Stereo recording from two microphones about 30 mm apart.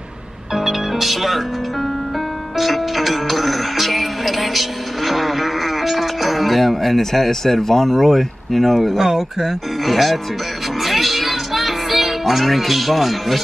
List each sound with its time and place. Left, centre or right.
0.6 s music: centre
8.9 s speech: centre
9.8 s speech: centre
10.8 s music: centre